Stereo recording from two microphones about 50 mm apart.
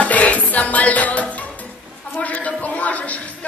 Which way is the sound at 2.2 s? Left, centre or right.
Left.